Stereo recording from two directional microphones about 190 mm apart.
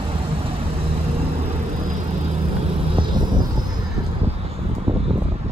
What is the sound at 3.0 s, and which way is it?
Vehicle, 25° right (ahead or behind).